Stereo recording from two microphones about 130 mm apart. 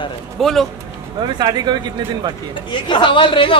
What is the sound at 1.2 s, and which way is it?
Speech, 35° right (ahead or behind).